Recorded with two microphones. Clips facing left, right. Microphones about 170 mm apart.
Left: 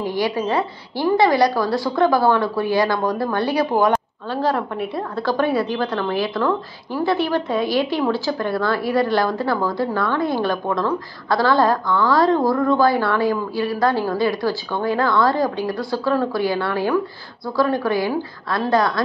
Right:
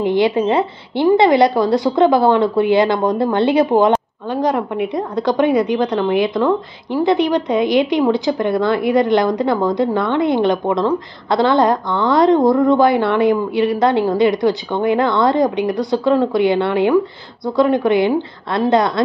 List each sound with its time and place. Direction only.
0.0 s a woman's voice: 20° right (ahead or behind)